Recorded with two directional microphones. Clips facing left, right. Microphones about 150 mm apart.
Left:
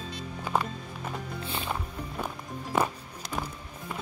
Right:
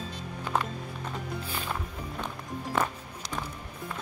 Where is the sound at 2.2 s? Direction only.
10° left (ahead or behind).